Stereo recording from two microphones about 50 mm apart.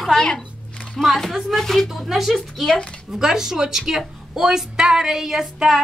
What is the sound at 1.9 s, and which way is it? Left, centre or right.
Speech, centre.